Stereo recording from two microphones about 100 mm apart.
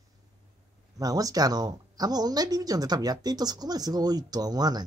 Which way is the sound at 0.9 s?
40° right (ahead or behind).